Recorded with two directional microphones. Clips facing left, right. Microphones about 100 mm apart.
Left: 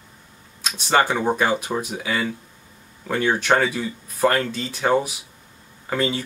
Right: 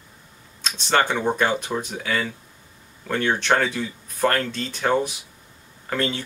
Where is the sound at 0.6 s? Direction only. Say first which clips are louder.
Left 2 dB; 5° left (ahead or behind).